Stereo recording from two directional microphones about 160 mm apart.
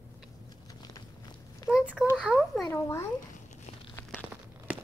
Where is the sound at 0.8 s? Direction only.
25° left (ahead or behind).